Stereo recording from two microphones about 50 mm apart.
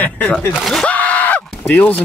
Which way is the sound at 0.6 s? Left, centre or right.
Centre.